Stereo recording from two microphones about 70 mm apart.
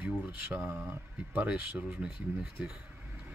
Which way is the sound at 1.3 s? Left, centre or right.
Centre.